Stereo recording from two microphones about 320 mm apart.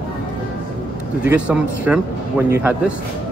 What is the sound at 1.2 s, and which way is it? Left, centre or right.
Speech, centre.